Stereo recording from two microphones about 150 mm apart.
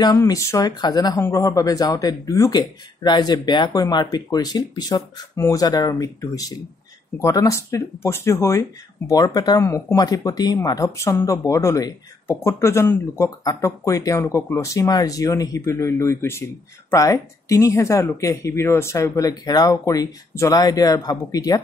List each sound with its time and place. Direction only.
0.0 s speech: 25° left (ahead or behind)